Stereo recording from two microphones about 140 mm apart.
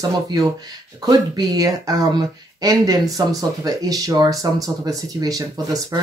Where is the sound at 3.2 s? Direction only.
25° right (ahead or behind).